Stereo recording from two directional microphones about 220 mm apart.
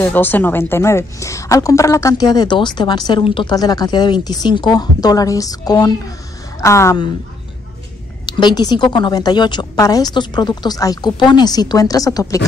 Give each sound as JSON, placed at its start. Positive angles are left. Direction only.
{"t": 0.0, "sound": "a woman's voice", "side_deg": 10}
{"t": 8.3, "sound": "a woman's voice", "side_deg": 20}